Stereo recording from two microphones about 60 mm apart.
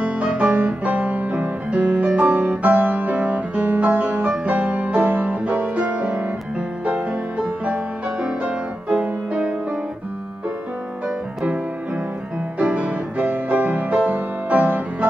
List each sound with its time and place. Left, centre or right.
0.0 s music: right
12.5 s music: right